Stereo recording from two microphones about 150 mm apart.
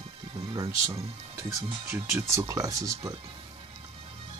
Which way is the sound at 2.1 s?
20° right (ahead or behind).